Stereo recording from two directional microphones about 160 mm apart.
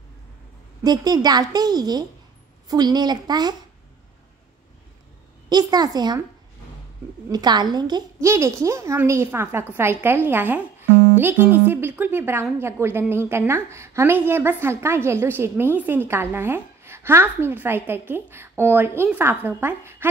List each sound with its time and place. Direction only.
0.8 s a woman's voice: 25° right (ahead or behind)
5.5 s a woman's voice: 25° right (ahead or behind)
7.2 s a woman's voice: 25° right (ahead or behind)